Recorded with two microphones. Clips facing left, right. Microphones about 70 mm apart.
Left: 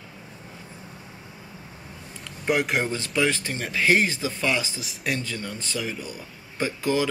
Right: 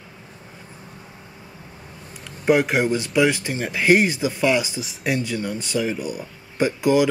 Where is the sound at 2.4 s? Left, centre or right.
Centre.